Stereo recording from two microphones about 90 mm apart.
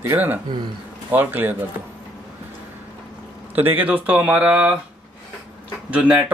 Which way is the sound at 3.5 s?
20° right (ahead or behind).